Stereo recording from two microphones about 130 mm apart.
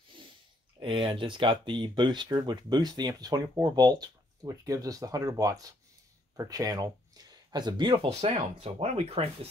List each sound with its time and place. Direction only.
0.7 s speech: 40° right (ahead or behind)
8.1 s speech: 55° right (ahead or behind)